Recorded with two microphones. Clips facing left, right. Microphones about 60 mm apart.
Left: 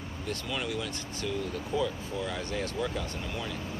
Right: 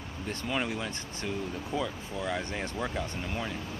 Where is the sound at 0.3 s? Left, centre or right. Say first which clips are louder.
Right 2 dB; right.